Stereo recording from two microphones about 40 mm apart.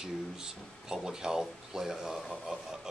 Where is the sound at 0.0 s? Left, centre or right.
Centre.